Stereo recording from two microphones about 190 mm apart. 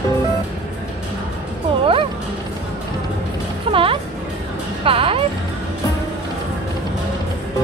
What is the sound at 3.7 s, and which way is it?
Music, 30° right (ahead or behind).